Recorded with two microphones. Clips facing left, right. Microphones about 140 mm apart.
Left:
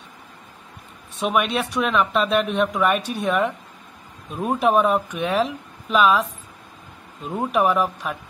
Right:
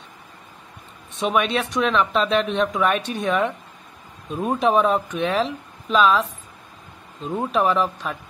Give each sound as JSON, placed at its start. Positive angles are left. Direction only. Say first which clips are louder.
{"t": 1.2, "sound": "speech", "louder": "even", "side_deg": 5}
{"t": 7.2, "sound": "speech", "louder": "left 1 dB", "side_deg": 10}